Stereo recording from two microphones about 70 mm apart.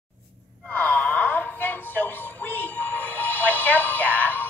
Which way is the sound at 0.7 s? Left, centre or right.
Left.